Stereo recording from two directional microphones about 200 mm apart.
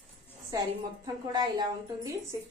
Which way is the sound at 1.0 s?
20° right (ahead or behind).